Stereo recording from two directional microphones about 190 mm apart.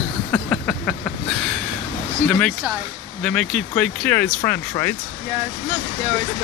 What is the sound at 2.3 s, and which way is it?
Speech, 5° left (ahead or behind).